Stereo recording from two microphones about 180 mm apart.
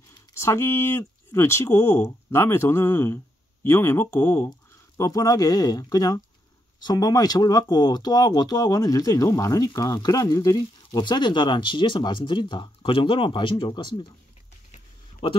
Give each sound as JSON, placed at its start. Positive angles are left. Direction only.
{"t": 0.3, "sound": "speech", "side_deg": 15}
{"t": 15.2, "sound": "speech", "side_deg": 30}